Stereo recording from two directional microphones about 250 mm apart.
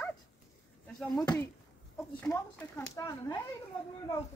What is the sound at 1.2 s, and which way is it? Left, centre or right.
A woman's voice, centre.